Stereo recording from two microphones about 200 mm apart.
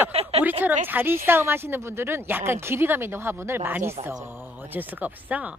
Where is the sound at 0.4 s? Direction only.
10° right (ahead or behind).